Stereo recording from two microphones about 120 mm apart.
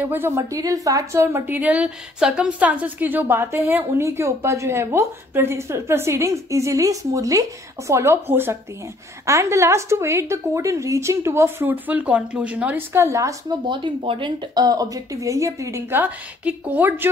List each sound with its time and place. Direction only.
0.0 s a woman's voice: 20° right (ahead or behind)
13.7 s a woman's voice: 45° right (ahead or behind); by 17.1 s 15° right (ahead or behind)